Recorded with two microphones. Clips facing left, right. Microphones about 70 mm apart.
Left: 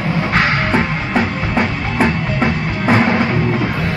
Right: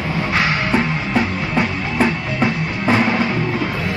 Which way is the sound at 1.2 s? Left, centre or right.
Centre.